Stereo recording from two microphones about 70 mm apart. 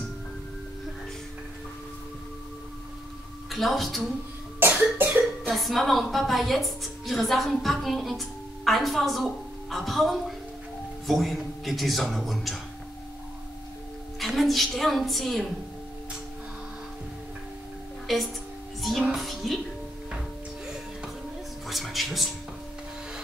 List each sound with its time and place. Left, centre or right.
3.4 s a woman's voice: centre
4.9 s cough: right
5.5 s a woman's voice: centre
14.2 s a woman's voice: centre
18.0 s a woman's voice: centre
18.8 s music: centre
20.6 s music: centre